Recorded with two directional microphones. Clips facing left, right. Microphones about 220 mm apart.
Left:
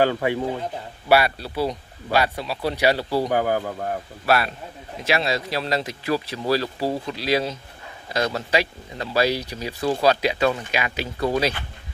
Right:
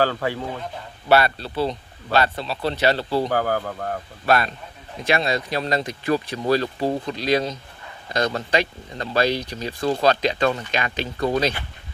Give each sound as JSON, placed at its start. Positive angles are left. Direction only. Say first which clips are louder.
{"t": 0.0, "sound": "speech", "louder": "left 2 dB", "side_deg": 15}